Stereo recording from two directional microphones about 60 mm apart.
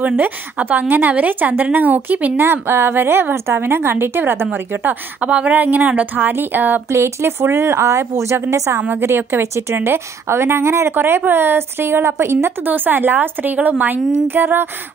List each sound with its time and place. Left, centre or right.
0.0 s a woman's voice: right
4.5 s a woman's voice: right
6.9 s speech: right
7.8 s speech: right
9.0 s speech: right
12.6 s a woman's voice: right